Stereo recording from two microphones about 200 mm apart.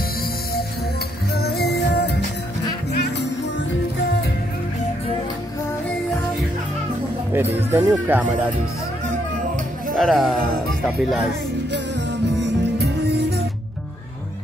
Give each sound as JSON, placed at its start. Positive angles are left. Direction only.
{"t": 1.3, "sound": "music", "side_deg": 50}
{"t": 7.3, "sound": "speech", "side_deg": -10}
{"t": 9.9, "sound": "speech", "side_deg": 0}
{"t": 12.4, "sound": "music", "side_deg": -55}